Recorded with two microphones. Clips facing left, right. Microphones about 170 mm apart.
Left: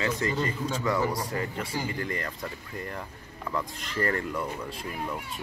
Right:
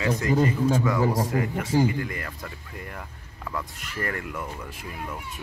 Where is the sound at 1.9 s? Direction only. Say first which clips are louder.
Right 1 dB; 10° right (ahead or behind).